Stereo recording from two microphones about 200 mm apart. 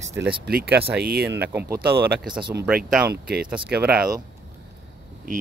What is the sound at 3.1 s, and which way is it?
Speech, 50° right (ahead or behind).